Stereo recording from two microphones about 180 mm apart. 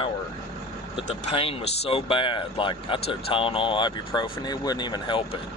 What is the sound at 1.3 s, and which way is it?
Speech, 30° left (ahead or behind).